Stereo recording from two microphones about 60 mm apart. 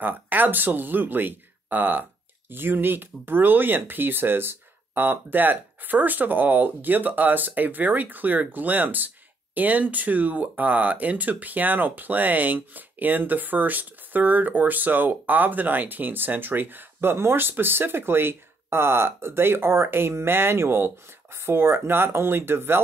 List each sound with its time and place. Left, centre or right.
0.0 s speech: right